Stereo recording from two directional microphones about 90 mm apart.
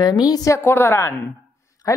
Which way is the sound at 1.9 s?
40° left (ahead or behind).